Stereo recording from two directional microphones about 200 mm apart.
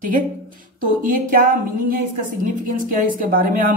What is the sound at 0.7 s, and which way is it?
A woman's voice, 45° right (ahead or behind).